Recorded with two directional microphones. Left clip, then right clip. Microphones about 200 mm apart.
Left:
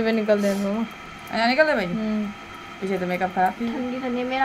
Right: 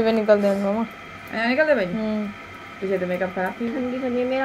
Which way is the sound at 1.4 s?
50° left (ahead or behind).